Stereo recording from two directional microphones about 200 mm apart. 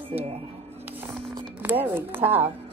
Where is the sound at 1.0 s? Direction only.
Centre (ahead or behind).